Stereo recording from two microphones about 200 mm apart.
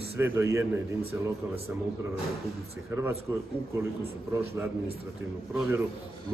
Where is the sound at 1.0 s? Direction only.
30° right (ahead or behind).